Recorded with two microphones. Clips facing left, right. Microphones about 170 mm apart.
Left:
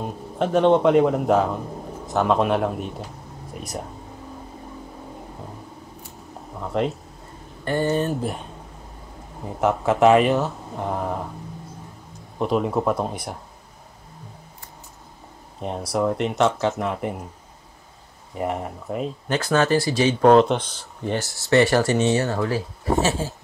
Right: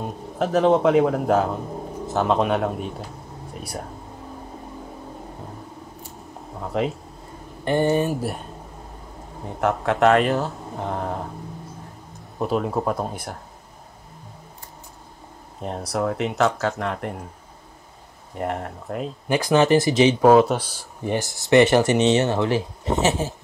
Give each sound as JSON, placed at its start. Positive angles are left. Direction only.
{"t": 0.0, "sound": "speech", "side_deg": 0}
{"t": 6.6, "sound": "speech", "side_deg": 0}
{"t": 7.6, "sound": "speech", "side_deg": -15}
{"t": 12.4, "sound": "speech", "side_deg": 0}
{"t": 15.6, "sound": "speech", "side_deg": 0}
{"t": 18.3, "sound": "speech", "side_deg": 5}
{"t": 19.2, "sound": "speech", "side_deg": -15}
{"t": 20.2, "sound": "speech", "side_deg": -5}